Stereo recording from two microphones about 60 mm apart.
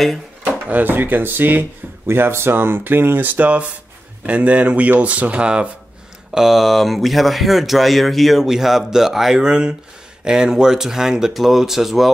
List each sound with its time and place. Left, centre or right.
0.7 s speech: right
2.0 s speech: right; by 5.7 s centre
6.3 s speech: centre